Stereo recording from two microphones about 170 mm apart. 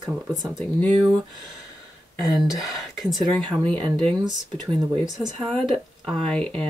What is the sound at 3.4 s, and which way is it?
Speech, 30° right (ahead or behind).